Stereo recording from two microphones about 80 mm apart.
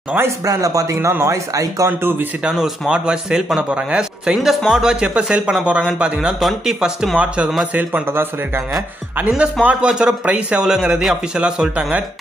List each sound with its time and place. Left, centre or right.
0.5 s speech: right
1.9 s a man's voice: right
2.4 s a man's voice: centre
8.1 s a man's voice: right
9.3 s a man's voice: centre